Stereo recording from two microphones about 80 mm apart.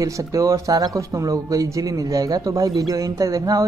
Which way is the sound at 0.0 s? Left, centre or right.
Right.